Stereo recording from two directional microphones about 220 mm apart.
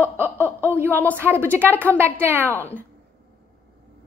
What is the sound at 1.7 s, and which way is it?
Speech, 5° left (ahead or behind).